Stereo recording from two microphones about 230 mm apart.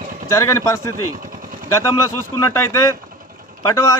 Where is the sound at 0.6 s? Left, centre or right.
Centre.